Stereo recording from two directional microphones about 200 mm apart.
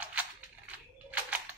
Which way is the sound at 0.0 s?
5° right (ahead or behind).